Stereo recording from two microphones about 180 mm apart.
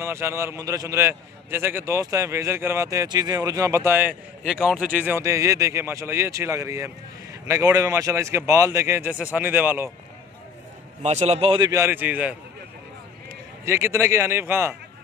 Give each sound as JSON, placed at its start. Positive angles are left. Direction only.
{"t": 0.0, "sound": "a man's voice", "side_deg": -15}
{"t": 11.0, "sound": "a man's voice", "side_deg": -40}
{"t": 13.7, "sound": "a man's voice", "side_deg": -15}